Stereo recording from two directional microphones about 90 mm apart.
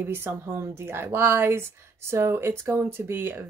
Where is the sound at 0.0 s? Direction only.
25° right (ahead or behind).